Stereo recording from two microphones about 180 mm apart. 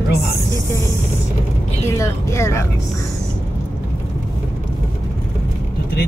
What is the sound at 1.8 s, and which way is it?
Speech, 15° left (ahead or behind).